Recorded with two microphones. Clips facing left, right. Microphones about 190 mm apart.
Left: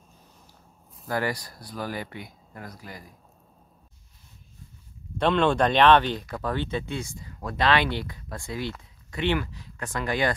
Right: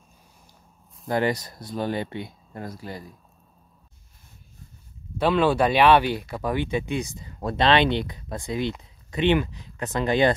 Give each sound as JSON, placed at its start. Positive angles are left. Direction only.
{"t": 1.0, "sound": "speech", "side_deg": -20}
{"t": 5.1, "sound": "speech", "side_deg": -5}